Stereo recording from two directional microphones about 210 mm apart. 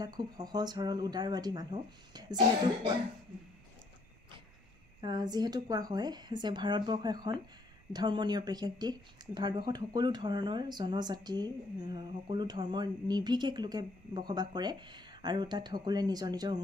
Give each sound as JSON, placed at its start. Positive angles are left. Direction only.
{"t": 0.0, "sound": "speech", "side_deg": -20}
{"t": 5.0, "sound": "speech", "side_deg": -20}